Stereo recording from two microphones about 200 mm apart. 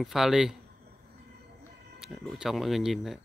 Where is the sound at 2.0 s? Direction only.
Centre (ahead or behind).